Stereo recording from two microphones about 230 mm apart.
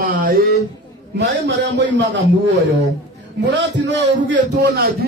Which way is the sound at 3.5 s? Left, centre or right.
Right.